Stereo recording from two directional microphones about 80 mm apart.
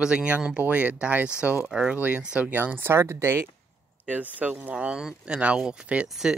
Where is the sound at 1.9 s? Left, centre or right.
Centre; by 3.4 s right.